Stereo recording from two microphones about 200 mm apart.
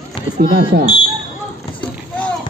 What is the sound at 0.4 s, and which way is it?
Speech, 50° right (ahead or behind).